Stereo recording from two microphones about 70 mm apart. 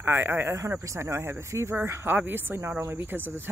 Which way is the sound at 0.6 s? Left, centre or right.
Right.